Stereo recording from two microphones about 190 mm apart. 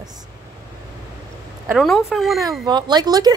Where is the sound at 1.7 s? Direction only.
Centre (ahead or behind).